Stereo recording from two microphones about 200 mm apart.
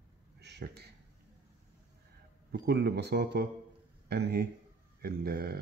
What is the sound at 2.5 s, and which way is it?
Speech, 55° right (ahead or behind).